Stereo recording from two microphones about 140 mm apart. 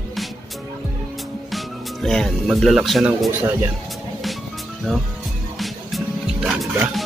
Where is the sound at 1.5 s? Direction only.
Centre (ahead or behind).